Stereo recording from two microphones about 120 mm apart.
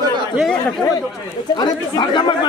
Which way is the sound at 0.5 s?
5° left (ahead or behind).